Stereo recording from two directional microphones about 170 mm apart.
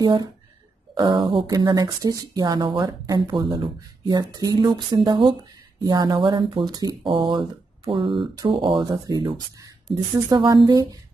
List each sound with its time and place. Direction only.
0.0 s speech: 25° right (ahead or behind)
9.9 s speech: centre (ahead or behind)
10.3 s speech: 25° right (ahead or behind)